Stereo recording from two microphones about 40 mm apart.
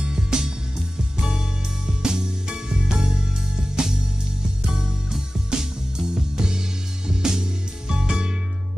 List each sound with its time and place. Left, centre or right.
0.0 s music: centre